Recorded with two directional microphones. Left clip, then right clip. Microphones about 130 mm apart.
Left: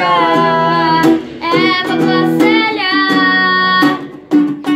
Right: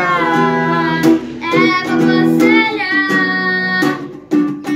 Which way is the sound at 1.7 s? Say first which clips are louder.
Left 1 dB; 20° right (ahead or behind).